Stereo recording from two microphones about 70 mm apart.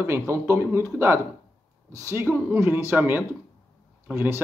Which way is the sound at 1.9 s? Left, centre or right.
Right.